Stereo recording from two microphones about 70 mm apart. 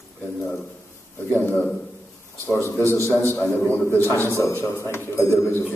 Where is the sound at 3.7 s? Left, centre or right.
Left.